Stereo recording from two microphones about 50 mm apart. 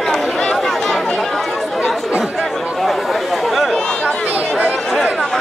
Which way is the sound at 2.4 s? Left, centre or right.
Centre.